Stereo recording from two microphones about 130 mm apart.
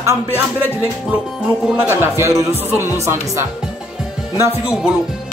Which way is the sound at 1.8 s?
15° right (ahead or behind).